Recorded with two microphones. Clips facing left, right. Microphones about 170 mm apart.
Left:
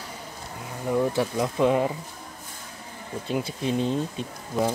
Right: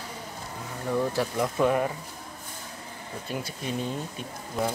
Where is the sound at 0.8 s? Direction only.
15° left (ahead or behind).